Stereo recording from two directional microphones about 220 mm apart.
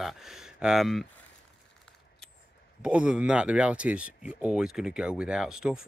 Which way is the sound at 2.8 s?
5° right (ahead or behind).